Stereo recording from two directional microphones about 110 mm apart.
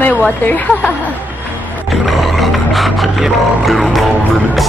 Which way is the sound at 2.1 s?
Centre (ahead or behind).